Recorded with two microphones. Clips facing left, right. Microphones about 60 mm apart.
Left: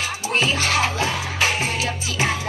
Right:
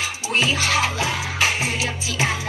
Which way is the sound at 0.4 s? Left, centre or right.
Left.